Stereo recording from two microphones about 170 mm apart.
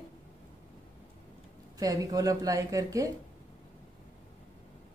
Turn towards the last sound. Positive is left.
turn(degrees=-20)  # may be behind; listen again after turning